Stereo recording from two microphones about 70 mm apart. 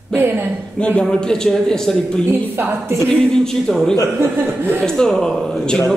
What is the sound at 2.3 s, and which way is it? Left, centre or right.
Speech, right.